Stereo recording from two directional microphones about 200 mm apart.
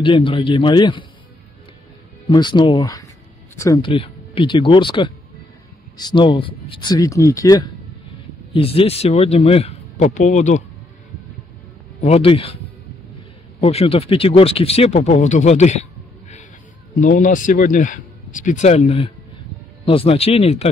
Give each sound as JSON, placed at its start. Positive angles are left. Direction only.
{"t": 0.0, "sound": "speech", "side_deg": 25}
{"t": 2.2, "sound": "speech", "side_deg": 20}
{"t": 8.5, "sound": "speech", "side_deg": 30}
{"t": 12.0, "sound": "speech", "side_deg": 30}